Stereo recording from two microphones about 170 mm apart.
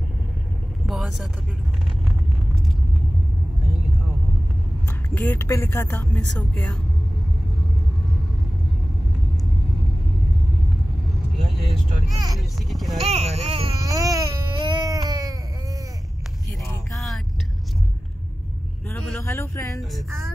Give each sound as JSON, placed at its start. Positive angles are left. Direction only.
{"t": 0.8, "sound": "vehicle", "side_deg": 0}
{"t": 5.1, "sound": "speech", "side_deg": 10}
{"t": 12.6, "sound": "speech", "side_deg": 0}
{"t": 13.0, "sound": "speech", "side_deg": -40}
{"t": 13.7, "sound": "baby cry", "side_deg": -20}
{"t": 19.2, "sound": "speech", "side_deg": 15}